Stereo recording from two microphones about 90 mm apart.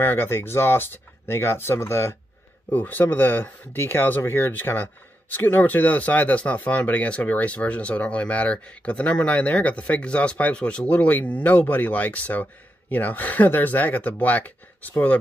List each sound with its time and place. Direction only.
0.0 s speech: 25° left (ahead or behind)
2.7 s speech: 20° left (ahead or behind)